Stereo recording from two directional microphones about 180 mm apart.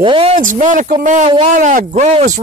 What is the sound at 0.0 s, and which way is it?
Speech, 30° right (ahead or behind).